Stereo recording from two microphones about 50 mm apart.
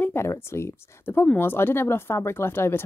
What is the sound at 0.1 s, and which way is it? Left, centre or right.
Speech, left.